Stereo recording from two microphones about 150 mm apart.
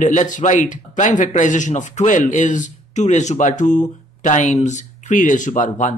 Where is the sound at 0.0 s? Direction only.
55° left (ahead or behind).